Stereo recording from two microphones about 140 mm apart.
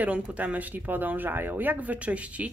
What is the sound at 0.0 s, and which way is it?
Speech, 10° right (ahead or behind).